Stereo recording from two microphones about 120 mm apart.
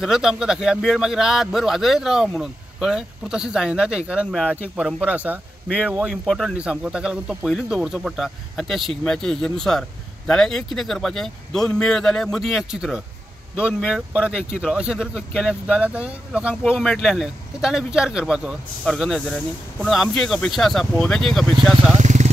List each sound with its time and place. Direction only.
0.0 s speech: 5° right (ahead or behind)
6.2 s speech: centre (ahead or behind)
21.9 s vehicle: 80° right